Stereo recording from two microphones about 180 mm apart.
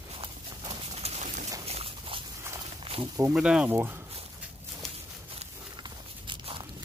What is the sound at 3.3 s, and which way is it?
Speech, 5° right (ahead or behind).